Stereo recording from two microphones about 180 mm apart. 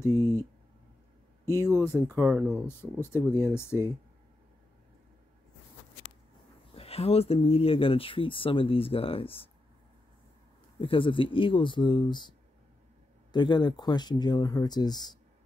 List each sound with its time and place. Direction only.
0.0 s speech: 15° left (ahead or behind)
1.6 s speech: 15° right (ahead or behind)
2.6 s speech: 15° left (ahead or behind)
6.7 s speech: 35° left (ahead or behind)
10.8 s speech: 30° left (ahead or behind)